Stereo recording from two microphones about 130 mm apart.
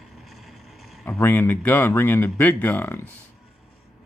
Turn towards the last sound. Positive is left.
turn(degrees=15)  # may be behind; listen again after turning